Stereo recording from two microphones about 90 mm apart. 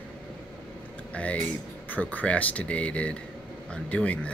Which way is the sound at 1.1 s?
15° left (ahead or behind).